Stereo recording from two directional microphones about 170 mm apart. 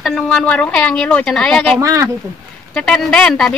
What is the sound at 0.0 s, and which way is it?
Speech, centre (ahead or behind).